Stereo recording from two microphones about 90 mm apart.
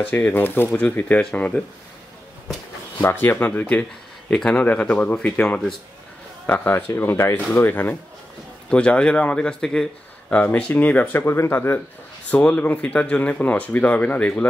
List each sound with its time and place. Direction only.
0.0 s speech: 20° left (ahead or behind)
3.0 s speech: 25° left (ahead or behind)
8.6 s speech: 10° left (ahead or behind); by 11.8 s 30° left (ahead or behind)
12.3 s speech: 15° left (ahead or behind)